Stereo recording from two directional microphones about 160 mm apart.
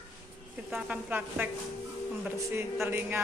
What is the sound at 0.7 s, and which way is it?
A woman's voice, 5° right (ahead or behind).